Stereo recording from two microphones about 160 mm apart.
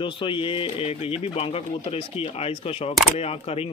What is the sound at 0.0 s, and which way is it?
Speech, 30° left (ahead or behind).